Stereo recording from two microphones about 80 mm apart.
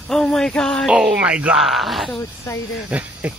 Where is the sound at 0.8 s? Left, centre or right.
Centre.